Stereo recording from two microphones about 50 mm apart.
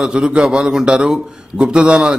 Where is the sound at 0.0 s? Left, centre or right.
Centre.